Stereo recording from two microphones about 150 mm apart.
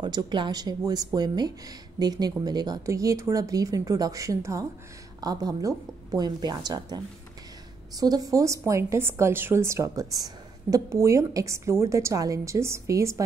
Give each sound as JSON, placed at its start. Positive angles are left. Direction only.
{"t": 0.0, "sound": "a woman's voice", "side_deg": -30}